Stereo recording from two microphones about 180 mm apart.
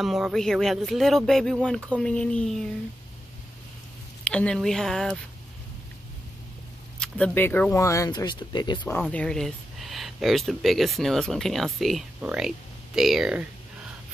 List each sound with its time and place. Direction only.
0.0 s speech: centre (ahead or behind)
4.2 s speech: 5° left (ahead or behind)
7.0 s speech: 5° left (ahead or behind); by 8.8 s 25° left (ahead or behind)
9.1 s speech: 5° left (ahead or behind)